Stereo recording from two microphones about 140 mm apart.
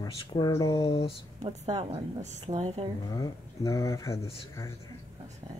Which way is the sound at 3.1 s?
25° left (ahead or behind).